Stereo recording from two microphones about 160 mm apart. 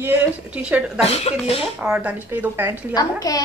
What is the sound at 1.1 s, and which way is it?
Speech, 40° left (ahead or behind).